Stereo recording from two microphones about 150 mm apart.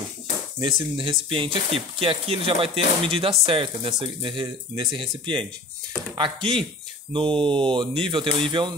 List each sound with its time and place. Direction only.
0.6 s speech: 35° right (ahead or behind)